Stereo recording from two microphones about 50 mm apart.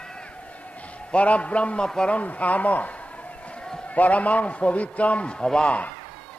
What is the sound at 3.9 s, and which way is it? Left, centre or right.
A man's voice, left.